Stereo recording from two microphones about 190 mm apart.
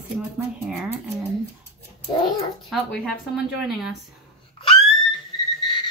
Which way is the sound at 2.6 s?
Centre (ahead or behind).